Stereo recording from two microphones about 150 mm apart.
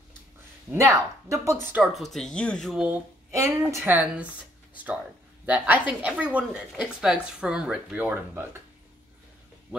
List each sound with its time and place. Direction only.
0.7 s speech: 20° right (ahead or behind)
2.1 s speech: 5° left (ahead or behind)
3.3 s a woman's voice: 20° right (ahead or behind)